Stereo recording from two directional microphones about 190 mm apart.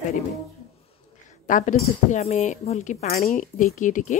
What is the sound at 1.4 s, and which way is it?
A woman's voice, 40° left (ahead or behind).